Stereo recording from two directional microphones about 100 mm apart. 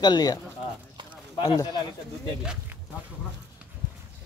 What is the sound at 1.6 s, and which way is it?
Speech, 45° left (ahead or behind).